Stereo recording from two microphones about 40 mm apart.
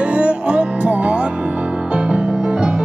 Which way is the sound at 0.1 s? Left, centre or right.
Right.